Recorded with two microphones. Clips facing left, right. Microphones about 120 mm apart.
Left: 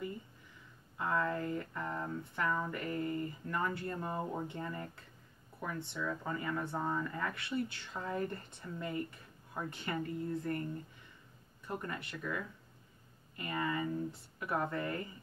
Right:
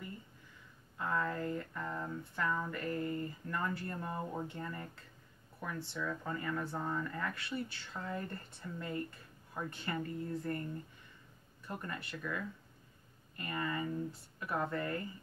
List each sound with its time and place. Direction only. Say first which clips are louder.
0.9 s speech: left 2 dB; 15° left (ahead or behind)
11.6 s speech: left 2 dB; 20° left (ahead or behind)
13.4 s speech: left 2 dB; 20° left (ahead or behind)